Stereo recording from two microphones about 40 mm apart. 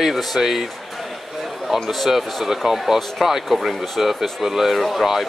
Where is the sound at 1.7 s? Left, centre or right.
Centre.